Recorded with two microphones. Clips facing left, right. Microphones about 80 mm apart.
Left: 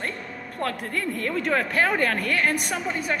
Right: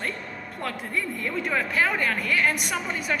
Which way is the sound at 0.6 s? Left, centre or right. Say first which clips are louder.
Left 2 dB; left.